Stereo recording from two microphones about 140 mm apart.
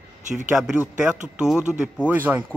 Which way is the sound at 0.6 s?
5° right (ahead or behind).